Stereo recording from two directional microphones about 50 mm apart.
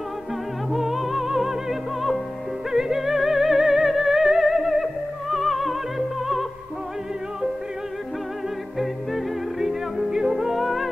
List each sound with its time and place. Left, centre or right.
0.7 s music: centre
8.7 s music: centre